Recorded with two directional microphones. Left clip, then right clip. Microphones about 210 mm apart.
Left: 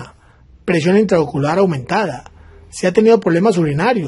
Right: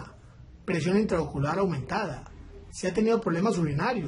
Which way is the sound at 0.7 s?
40° left (ahead or behind).